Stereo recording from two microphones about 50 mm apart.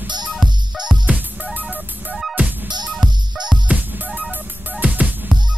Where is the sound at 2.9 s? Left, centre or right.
Centre.